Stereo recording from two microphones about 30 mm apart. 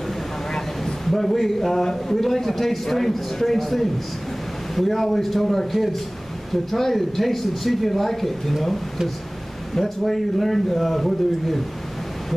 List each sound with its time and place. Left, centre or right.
0.5 s vehicle: centre
1.0 s a man's voice: centre
9.8 s speech: centre